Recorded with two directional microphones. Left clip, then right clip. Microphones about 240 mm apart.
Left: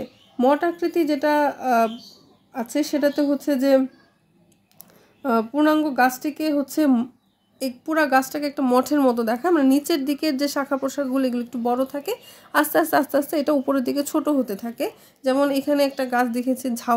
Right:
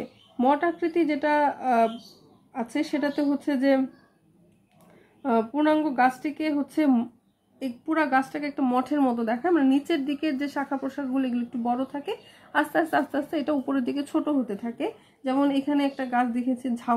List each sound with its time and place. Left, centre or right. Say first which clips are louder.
0.4 s speech: left 3 dB; left
5.2 s speech: left 4 dB; left